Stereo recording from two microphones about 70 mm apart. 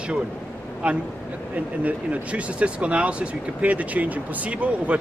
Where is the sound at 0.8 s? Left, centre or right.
Centre.